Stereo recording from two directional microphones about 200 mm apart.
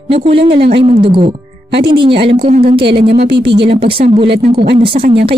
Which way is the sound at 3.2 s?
55° right (ahead or behind).